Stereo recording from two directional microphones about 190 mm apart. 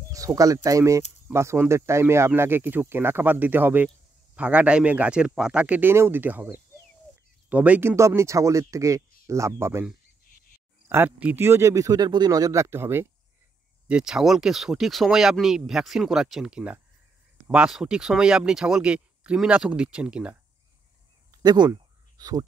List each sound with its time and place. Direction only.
0.1 s speech: 20° right (ahead or behind)
10.9 s speech: 10° right (ahead or behind)
21.3 s a sound: 20° right (ahead or behind)